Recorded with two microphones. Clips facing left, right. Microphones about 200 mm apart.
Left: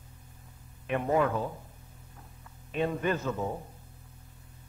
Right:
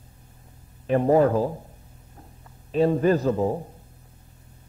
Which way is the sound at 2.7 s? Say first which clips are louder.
Right 10 dB; 35° right (ahead or behind).